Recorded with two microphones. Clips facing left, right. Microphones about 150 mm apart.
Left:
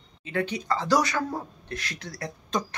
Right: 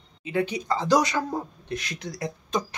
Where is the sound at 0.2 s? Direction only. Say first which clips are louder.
Right 2 dB; 15° right (ahead or behind).